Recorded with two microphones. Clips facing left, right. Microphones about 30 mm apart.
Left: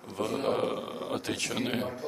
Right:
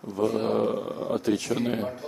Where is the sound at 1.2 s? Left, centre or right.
Left.